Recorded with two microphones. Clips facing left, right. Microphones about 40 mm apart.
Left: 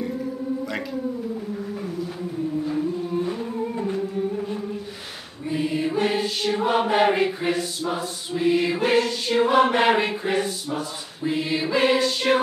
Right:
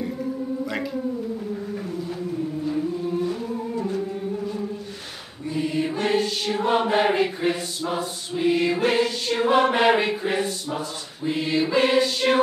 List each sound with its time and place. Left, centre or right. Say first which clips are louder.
3.7 s singing: right 2 dB; left
5.5 s music: left 1 dB; centre
5.8 s music: right 2 dB; centre
6.5 s chant: even; centre
7.8 s chant: even; centre